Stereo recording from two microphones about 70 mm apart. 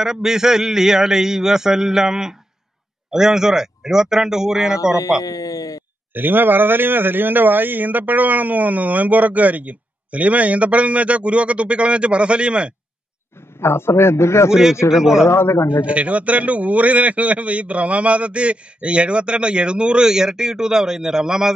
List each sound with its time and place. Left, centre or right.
0.0 s a man's voice: centre
5.2 s speech: left
6.1 s a man's voice: right
13.6 s a man's voice: left
14.5 s a man's voice: centre
15.2 s a man's voice: left
15.8 s a man's voice: centre